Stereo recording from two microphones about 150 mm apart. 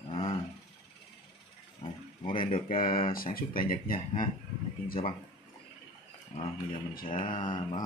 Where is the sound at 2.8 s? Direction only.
70° left (ahead or behind).